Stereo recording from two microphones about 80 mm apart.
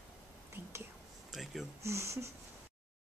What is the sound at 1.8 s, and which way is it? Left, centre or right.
Speech, right.